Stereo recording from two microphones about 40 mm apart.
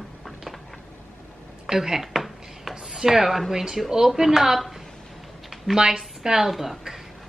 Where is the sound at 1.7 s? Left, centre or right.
Centre.